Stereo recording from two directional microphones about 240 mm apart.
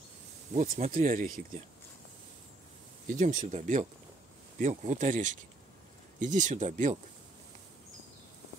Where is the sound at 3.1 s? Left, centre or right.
Right.